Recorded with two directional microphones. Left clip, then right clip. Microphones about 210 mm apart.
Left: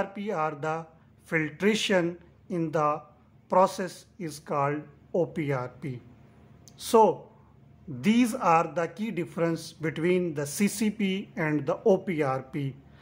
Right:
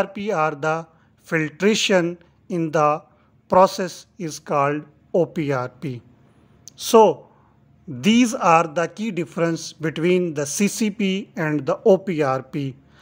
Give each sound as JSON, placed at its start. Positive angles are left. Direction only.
{"t": 0.0, "sound": "a man's voice", "side_deg": -35}